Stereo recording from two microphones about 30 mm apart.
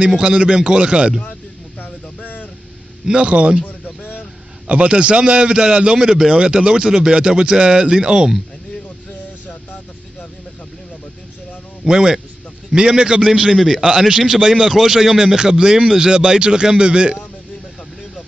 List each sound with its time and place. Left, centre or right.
0.1 s a man's voice: right
1.8 s a sound: left
3.1 s a man's voice: right
3.6 s a sound: left
4.6 s a man's voice: right
6.3 s speech: right
11.9 s a man's voice: right
13.8 s a man's voice: right